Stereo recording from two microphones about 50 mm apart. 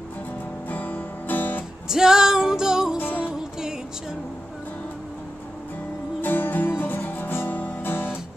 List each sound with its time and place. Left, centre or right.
0.7 s music: left
1.9 s music: centre
6.2 s music: left